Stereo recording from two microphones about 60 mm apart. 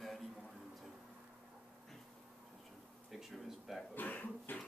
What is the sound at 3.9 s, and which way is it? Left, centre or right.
Cough, left.